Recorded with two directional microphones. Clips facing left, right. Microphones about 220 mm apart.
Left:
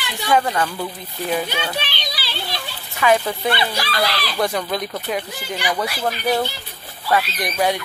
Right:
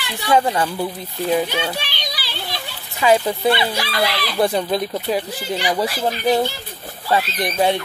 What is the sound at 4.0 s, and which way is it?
Speech, 20° right (ahead or behind).